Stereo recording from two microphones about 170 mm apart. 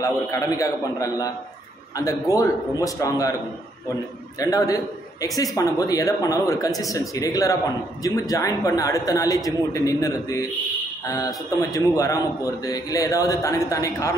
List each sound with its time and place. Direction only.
0.0 s a man's voice: 20° left (ahead or behind)
4.4 s a man's voice: 20° left (ahead or behind)